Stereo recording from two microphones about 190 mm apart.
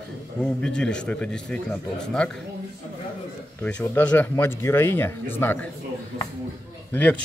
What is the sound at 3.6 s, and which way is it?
Speech, 10° left (ahead or behind).